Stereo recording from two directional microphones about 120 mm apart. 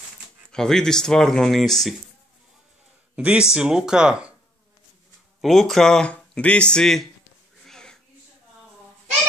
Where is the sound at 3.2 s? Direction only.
10° right (ahead or behind).